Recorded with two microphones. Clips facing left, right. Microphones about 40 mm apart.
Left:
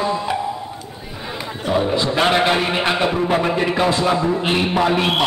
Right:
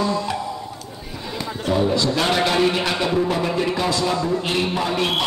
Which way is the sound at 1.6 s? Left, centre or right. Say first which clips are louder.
Left 1 dB; left.